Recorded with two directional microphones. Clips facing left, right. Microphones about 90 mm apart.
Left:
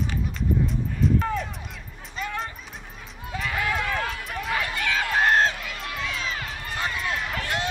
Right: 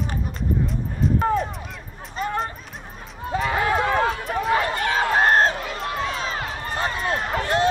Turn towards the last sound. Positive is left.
turn(degrees=-35)  # may be behind; listen again after turning